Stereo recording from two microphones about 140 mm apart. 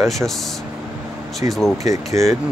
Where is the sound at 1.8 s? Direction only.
20° right (ahead or behind).